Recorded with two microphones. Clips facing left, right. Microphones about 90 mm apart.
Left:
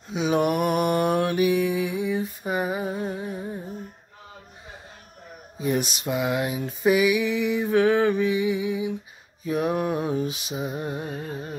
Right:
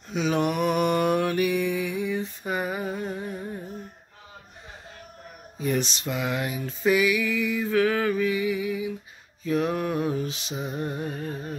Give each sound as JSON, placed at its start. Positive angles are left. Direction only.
{"t": 0.1, "sound": "mantra", "side_deg": 10}
{"t": 0.5, "sound": "mantra", "side_deg": 50}
{"t": 0.8, "sound": "mantra", "side_deg": 15}
{"t": 5.6, "sound": "a sound", "side_deg": 15}
{"t": 9.4, "sound": "mantra", "side_deg": 15}